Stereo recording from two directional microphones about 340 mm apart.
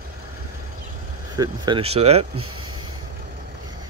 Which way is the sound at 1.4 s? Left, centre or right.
Centre.